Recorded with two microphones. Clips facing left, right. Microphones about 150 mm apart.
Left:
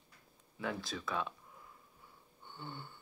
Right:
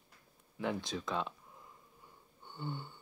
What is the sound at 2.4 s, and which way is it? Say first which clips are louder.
Wheeze: right 5 dB; 15° right (ahead or behind).